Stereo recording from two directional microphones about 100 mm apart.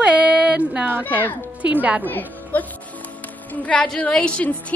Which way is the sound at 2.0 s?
20° left (ahead or behind).